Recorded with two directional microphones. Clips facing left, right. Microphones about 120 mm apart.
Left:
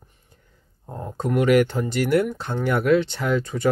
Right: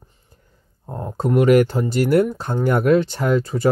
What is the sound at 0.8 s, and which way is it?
Speech, 25° right (ahead or behind).